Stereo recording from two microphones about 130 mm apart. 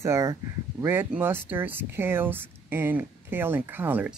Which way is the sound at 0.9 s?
15° right (ahead or behind).